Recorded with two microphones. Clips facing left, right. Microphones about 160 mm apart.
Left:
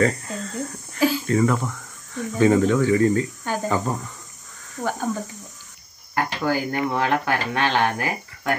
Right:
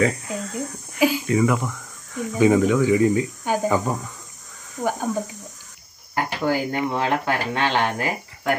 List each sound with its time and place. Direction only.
0.0 s a sound: 10° right (ahead or behind)
2.1 s speech: 10° right (ahead or behind)
6.1 s speech: 25° right (ahead or behind)